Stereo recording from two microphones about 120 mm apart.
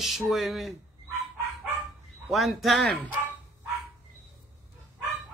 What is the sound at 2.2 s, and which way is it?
Speech, centre (ahead or behind).